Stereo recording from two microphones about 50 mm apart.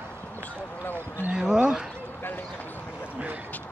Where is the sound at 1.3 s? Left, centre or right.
Centre.